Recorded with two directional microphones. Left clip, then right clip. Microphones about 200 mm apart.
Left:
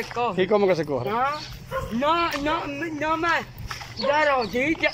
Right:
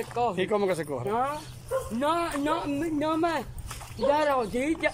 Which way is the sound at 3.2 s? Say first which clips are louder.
Left 4 dB; 25° right (ahead or behind).